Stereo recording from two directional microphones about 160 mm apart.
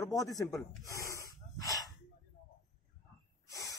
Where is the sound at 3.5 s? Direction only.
20° left (ahead or behind).